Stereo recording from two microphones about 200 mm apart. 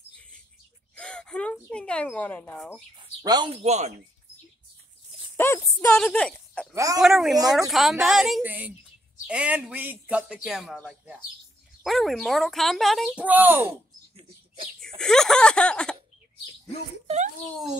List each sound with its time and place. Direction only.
0.9 s a sound: 5° left (ahead or behind)
3.2 s speech: 20° right (ahead or behind)
3.6 s speech: 35° right (ahead or behind)
5.4 s speech: 10° left (ahead or behind)
6.7 s speech: 15° right (ahead or behind)
7.0 s speech: centre (ahead or behind)
15.0 s speech: 5° left (ahead or behind)